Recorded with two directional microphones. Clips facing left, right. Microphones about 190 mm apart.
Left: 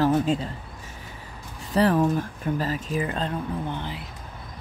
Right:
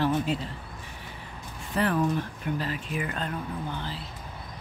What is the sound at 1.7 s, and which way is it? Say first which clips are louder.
Speech: left 5 dB; 40° left (ahead or behind).